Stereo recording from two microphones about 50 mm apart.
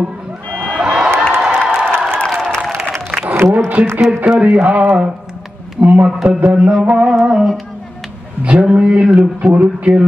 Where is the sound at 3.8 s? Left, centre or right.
Right.